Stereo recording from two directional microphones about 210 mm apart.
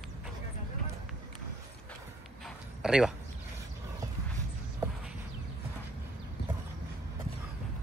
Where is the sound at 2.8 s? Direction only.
5° right (ahead or behind).